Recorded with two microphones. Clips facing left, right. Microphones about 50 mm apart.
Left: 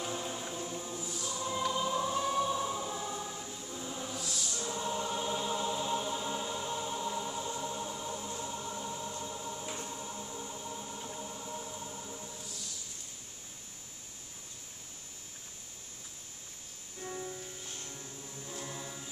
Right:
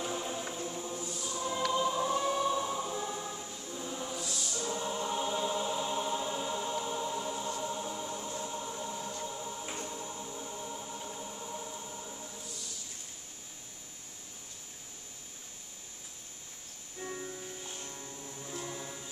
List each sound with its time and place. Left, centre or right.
0.0 s choir: centre
8.6 s music: centre
17.0 s music: centre